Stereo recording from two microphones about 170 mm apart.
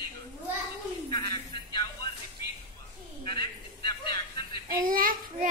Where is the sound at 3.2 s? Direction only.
30° left (ahead or behind).